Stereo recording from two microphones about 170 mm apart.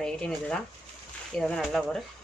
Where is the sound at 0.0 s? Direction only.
5° left (ahead or behind).